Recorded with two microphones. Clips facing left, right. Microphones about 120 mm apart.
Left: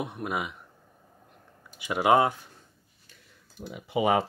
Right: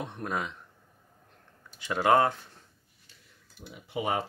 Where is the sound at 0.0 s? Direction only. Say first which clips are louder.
Left 2 dB; 10° left (ahead or behind).